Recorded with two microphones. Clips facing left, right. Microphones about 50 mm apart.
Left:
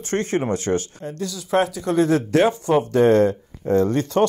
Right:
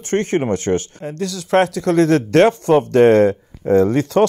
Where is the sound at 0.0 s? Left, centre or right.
Right.